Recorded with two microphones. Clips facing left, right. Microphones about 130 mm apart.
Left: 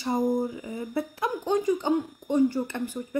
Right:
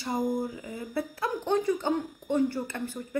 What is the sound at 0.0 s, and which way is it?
Speech, 20° left (ahead or behind).